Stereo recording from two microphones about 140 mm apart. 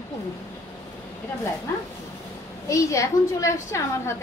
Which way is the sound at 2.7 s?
25° left (ahead or behind).